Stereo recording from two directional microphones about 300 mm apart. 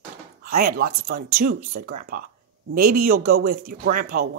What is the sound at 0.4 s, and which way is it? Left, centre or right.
Speech, right.